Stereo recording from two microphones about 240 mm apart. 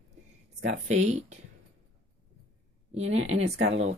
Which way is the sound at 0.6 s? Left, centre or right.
Right.